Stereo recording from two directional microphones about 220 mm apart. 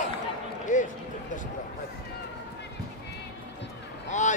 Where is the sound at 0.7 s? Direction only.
35° left (ahead or behind).